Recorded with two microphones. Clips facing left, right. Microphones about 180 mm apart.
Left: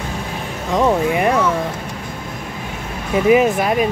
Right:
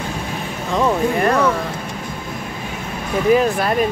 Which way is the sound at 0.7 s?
15° left (ahead or behind).